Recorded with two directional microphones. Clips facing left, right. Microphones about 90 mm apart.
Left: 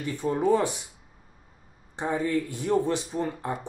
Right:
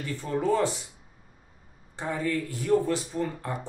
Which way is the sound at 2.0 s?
20° left (ahead or behind).